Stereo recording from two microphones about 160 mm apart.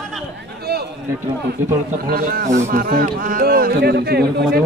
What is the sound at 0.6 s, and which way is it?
Speech, 85° right.